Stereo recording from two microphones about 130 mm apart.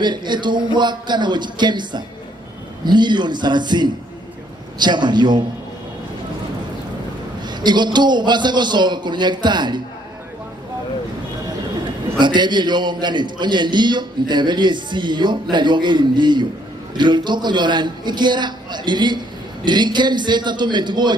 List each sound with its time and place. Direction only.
0.0 s a man's voice: 35° right (ahead or behind)
7.4 s a man's voice: 35° right (ahead or behind)
12.2 s a man's voice: 35° right (ahead or behind)